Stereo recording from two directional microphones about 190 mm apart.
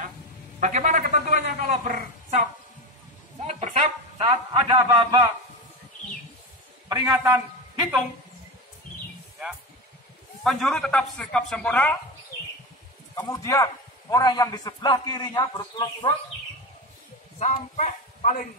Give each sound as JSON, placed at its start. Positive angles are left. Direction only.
{"t": 0.6, "sound": "a woman's voice", "side_deg": -40}
{"t": 3.4, "sound": "a sound", "side_deg": -35}
{"t": 4.3, "sound": "a man's voice", "side_deg": -25}
{"t": 6.9, "sound": "a man's voice", "side_deg": -20}
{"t": 10.4, "sound": "speech", "side_deg": 0}
{"t": 13.1, "sound": "a man's voice", "side_deg": 20}
{"t": 17.4, "sound": "speech", "side_deg": 35}